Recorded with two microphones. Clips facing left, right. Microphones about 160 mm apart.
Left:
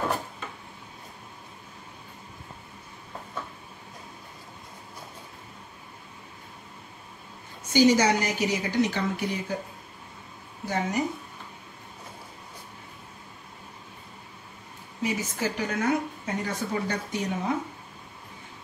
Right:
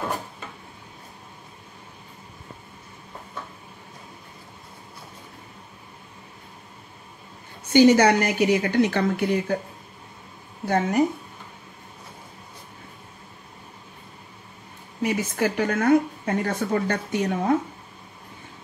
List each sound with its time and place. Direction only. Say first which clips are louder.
7.7 s a woman's voice: right 5 dB; 60° right (ahead or behind)
10.7 s a woman's voice: right 7 dB; 55° right (ahead or behind)
15.0 s a woman's voice: right 5 dB; 60° right (ahead or behind)